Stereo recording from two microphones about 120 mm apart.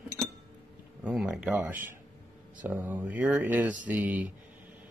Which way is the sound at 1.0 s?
5° right (ahead or behind).